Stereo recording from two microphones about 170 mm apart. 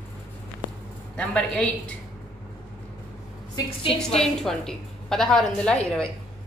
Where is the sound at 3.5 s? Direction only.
30° left (ahead or behind).